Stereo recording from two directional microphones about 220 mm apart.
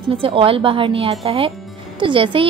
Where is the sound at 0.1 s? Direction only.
25° right (ahead or behind).